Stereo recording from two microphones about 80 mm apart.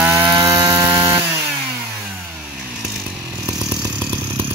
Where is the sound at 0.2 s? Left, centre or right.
Right.